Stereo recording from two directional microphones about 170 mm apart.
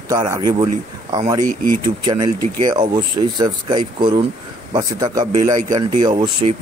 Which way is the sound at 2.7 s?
25° right (ahead or behind).